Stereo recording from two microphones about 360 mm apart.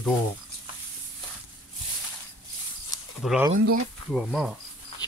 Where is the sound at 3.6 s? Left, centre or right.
Right.